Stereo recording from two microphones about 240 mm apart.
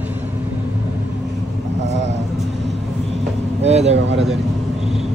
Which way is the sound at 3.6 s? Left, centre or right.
Right.